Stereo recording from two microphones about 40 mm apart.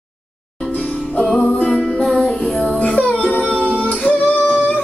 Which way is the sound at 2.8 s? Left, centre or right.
Left.